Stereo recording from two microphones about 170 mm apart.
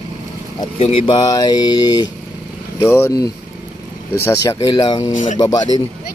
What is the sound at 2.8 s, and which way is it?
Speech, 15° left (ahead or behind).